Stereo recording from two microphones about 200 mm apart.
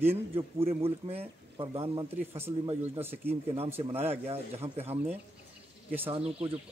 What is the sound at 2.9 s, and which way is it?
Speech, 10° right (ahead or behind).